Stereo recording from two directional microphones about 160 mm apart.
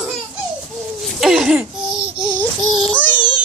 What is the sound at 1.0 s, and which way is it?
Babbling, centre (ahead or behind).